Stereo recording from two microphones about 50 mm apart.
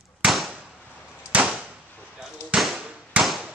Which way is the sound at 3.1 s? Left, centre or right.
Right.